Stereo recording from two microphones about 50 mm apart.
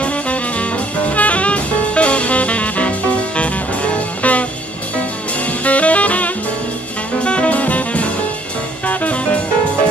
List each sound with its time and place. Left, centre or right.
0.0 s jazz: left
5.4 s saxophone: left
7.2 s jazz: left
8.8 s music: left